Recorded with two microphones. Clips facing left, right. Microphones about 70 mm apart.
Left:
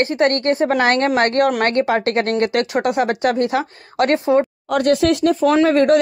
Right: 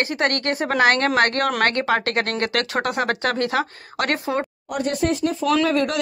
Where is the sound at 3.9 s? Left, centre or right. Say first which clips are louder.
Left 7 dB; right.